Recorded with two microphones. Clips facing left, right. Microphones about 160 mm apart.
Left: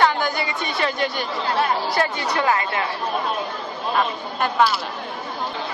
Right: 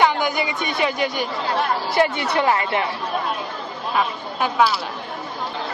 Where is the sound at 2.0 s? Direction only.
25° right (ahead or behind).